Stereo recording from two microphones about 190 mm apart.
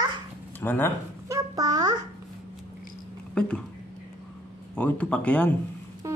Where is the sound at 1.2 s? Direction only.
15° right (ahead or behind).